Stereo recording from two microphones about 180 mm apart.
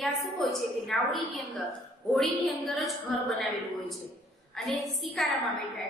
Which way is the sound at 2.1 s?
Centre (ahead or behind).